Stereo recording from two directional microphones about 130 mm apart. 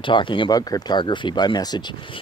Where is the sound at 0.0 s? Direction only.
40° left (ahead or behind).